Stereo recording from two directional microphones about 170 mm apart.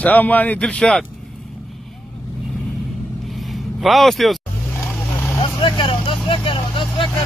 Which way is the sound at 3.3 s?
Centre (ahead or behind).